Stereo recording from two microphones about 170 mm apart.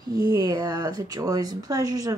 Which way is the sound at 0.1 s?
25° right (ahead or behind).